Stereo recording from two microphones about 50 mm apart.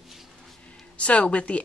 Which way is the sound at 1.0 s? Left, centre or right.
Left.